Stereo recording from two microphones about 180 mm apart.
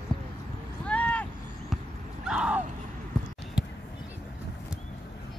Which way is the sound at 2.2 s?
5° right (ahead or behind).